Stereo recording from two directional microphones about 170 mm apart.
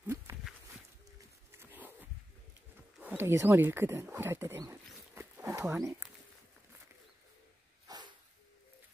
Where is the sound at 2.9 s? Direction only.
10° right (ahead or behind).